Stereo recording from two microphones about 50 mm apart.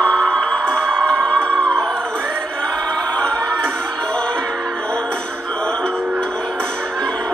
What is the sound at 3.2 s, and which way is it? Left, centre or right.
Music, left.